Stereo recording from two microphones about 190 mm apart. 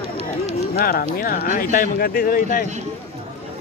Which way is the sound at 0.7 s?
50° left (ahead or behind).